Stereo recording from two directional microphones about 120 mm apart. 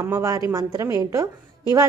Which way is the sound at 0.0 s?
25° right (ahead or behind).